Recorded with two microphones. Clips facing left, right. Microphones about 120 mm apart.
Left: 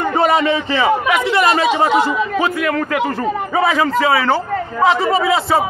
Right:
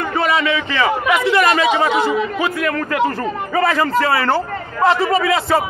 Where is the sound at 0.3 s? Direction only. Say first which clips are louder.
Left 3 dB; 35° left (ahead or behind).